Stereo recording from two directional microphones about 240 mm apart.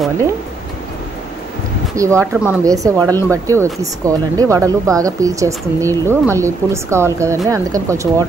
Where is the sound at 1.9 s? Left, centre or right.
Centre.